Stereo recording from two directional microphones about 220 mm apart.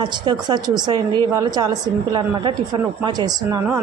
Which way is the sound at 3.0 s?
15° right (ahead or behind).